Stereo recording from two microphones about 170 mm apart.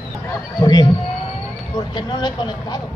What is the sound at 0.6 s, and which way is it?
A woman's voice, 25° left (ahead or behind).